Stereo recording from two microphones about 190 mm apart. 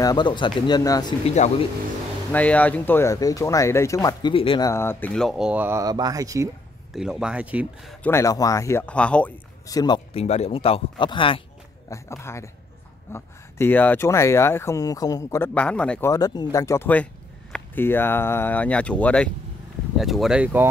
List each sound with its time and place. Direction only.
0.0 s speech: 20° left (ahead or behind)
1.2 s speech: 35° left (ahead or behind)
2.3 s speech: 10° left (ahead or behind); by 6.5 s 15° right (ahead or behind)
6.9 s speech: 5° right (ahead or behind)
8.0 s speech: 15° left (ahead or behind)
9.7 s speech: 20° left (ahead or behind)
11.9 s speech: 15° left (ahead or behind)
16.1 s speech: 20° left (ahead or behind); by 20.6 s 5° right (ahead or behind)